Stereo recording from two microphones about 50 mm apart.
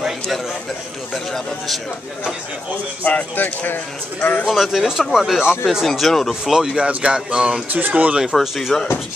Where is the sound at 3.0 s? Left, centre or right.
Left.